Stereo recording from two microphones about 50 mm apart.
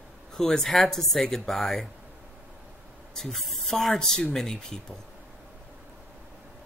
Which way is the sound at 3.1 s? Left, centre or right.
Centre.